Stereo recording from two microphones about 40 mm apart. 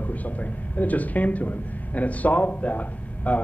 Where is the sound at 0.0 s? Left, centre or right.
Left.